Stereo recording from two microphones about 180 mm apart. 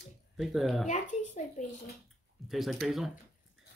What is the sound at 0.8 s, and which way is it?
Speech, 40° left (ahead or behind).